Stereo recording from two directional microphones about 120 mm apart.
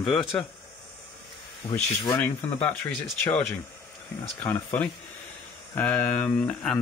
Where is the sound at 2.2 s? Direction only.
10° left (ahead or behind).